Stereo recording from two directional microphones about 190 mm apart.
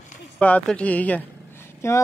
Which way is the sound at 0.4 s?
5° left (ahead or behind).